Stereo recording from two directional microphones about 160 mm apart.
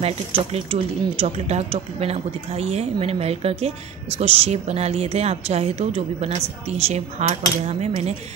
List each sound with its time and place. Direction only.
0.0 s a woman's voice: 40° right (ahead or behind)